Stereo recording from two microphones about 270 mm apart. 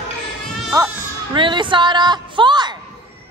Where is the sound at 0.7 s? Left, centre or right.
Centre.